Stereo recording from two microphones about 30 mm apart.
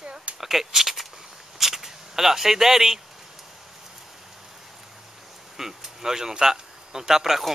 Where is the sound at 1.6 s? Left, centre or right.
Centre.